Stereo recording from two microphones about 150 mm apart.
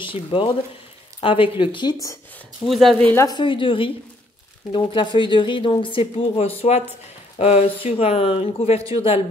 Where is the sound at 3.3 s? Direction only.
30° left (ahead or behind).